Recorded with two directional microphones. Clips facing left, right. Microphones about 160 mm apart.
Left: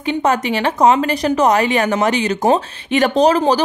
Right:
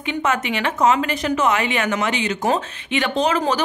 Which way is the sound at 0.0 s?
35° left (ahead or behind).